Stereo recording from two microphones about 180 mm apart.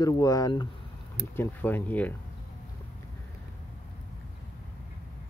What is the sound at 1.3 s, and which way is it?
Speech, 10° left (ahead or behind).